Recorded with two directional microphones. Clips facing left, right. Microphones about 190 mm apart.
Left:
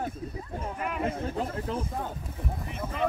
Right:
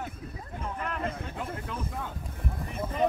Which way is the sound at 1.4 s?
30° left (ahead or behind).